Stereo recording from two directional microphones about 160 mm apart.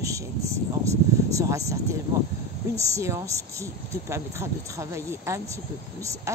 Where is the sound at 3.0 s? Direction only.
20° right (ahead or behind).